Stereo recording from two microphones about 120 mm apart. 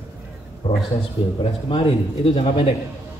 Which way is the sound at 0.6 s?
40° left (ahead or behind).